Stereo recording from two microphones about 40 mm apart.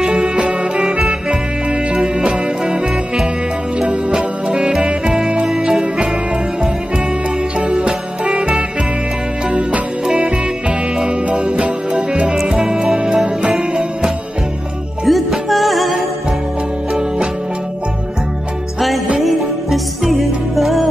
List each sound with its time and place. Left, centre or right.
0.0 s music: right
2.2 s music: right
3.9 s music: centre
7.6 s music: right
12.9 s music: centre
15.0 s music: centre
19.2 s music: centre